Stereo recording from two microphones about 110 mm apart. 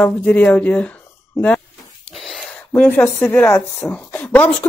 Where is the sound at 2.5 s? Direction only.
15° left (ahead or behind).